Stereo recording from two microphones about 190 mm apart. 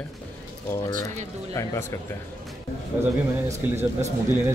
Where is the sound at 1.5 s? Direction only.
15° left (ahead or behind).